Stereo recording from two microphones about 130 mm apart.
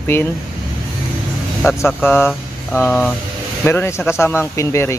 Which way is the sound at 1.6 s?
20° left (ahead or behind).